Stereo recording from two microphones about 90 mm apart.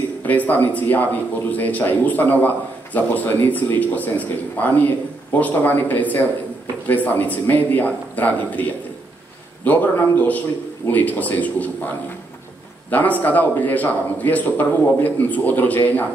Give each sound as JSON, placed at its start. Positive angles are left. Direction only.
{"t": 0.2, "sound": "a man's voice", "side_deg": 20}
{"t": 9.7, "sound": "a man's voice", "side_deg": 20}
{"t": 12.9, "sound": "a man's voice", "side_deg": 20}